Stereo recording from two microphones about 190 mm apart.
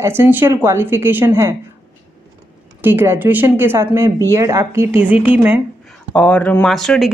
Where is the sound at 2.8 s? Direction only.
10° right (ahead or behind).